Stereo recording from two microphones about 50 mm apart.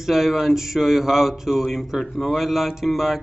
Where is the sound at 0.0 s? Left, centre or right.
Centre.